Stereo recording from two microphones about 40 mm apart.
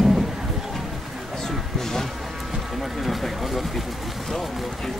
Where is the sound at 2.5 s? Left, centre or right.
Centre.